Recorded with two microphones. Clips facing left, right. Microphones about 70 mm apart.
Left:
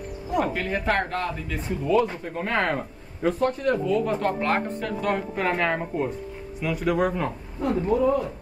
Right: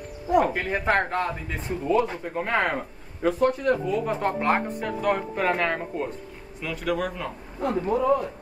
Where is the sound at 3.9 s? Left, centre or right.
Centre.